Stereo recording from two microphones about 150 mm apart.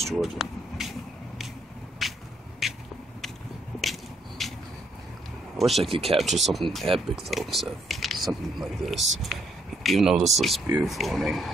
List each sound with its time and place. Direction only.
0.0 s vehicle: centre (ahead or behind)
2.0 s a sound: centre (ahead or behind)
3.8 s a sound: centre (ahead or behind)
5.6 s speech: centre (ahead or behind)
5.9 s speech: 40° right (ahead or behind)
6.1 s speech: centre (ahead or behind)